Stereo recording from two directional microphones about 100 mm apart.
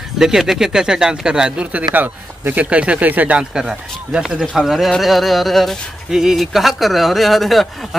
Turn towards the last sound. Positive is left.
turn(degrees=0)  # may be behind; listen again after turning